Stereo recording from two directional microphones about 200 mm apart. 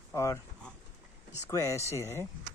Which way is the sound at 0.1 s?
15° left (ahead or behind).